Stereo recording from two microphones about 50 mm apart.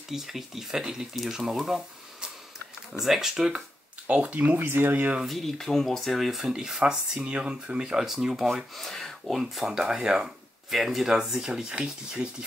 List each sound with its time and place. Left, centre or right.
0.1 s speech: centre
2.9 s speech: centre
4.1 s speech: right
4.4 s speech: right
4.6 s speech: right
4.9 s speech: right
5.2 s speech: centre